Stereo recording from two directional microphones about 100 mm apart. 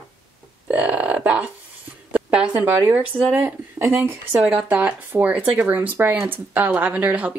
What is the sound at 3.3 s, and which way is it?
Speech, 20° right (ahead or behind).